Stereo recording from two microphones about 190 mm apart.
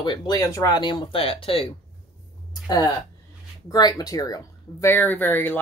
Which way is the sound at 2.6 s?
20° left (ahead or behind).